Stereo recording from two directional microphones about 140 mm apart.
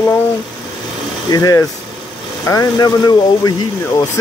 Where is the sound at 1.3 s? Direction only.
25° left (ahead or behind).